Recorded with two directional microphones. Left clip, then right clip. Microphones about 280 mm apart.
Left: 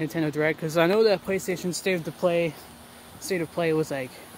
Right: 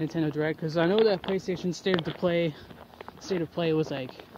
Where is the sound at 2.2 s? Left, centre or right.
Right.